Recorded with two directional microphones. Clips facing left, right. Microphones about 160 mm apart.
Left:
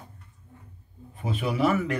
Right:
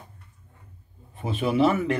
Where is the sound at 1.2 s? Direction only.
25° right (ahead or behind).